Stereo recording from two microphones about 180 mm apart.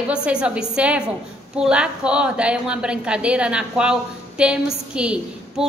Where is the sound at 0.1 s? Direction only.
5° right (ahead or behind).